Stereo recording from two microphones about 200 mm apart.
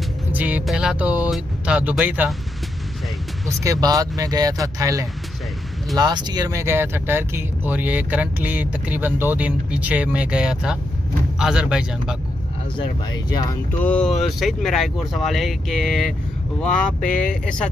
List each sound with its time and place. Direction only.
0.3 s speech: 10° right (ahead or behind)
3.4 s speech: 15° right (ahead or behind)
13.3 s speech: 20° left (ahead or behind)
13.8 s speech: 5° left (ahead or behind)